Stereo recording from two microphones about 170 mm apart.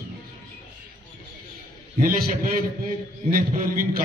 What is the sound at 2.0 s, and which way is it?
A man's voice, 60° right (ahead or behind).